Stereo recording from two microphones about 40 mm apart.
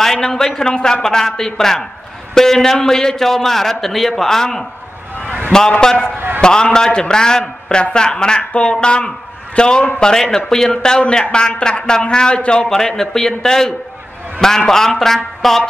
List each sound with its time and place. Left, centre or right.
0.0 s a man's voice: centre
6.1 s a man's voice: right
6.4 s a man's voice: centre
12.6 s a man's voice: centre